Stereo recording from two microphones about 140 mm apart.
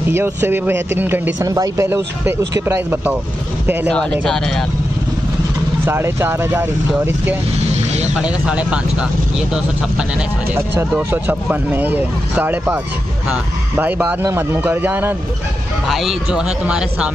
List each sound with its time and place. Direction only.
0.1 s speech: 15° right (ahead or behind)
3.9 s a man's voice: 5° left (ahead or behind)
5.9 s speech: 15° right (ahead or behind)
8.2 s speech: 5° right (ahead or behind)
10.5 s speech: 15° right (ahead or behind)
13.7 s speech: 10° right (ahead or behind)
15.9 s a man's voice: centre (ahead or behind)